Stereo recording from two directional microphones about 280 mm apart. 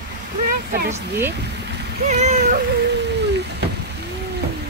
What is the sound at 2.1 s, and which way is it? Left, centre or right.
Cat, right.